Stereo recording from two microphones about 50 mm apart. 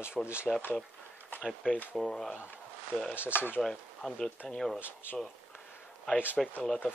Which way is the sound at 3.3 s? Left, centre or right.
Left.